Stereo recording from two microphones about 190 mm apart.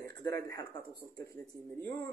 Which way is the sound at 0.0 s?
15° left (ahead or behind).